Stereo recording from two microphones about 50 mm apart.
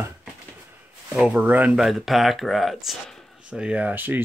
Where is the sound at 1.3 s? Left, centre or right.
Right.